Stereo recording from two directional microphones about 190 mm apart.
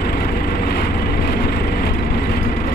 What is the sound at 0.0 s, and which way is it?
Vehicle, 55° left (ahead or behind).